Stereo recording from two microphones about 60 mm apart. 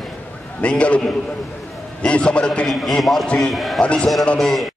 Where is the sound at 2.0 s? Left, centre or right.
Centre.